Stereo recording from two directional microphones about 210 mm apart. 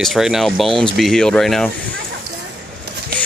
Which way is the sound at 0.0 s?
Centre (ahead or behind).